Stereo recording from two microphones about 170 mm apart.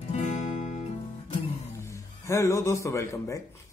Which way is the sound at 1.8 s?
15° left (ahead or behind).